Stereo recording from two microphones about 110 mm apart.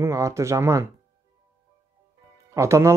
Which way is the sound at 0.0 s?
25° right (ahead or behind).